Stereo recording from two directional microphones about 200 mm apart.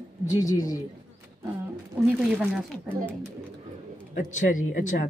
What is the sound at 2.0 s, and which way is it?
Speech, centre (ahead or behind).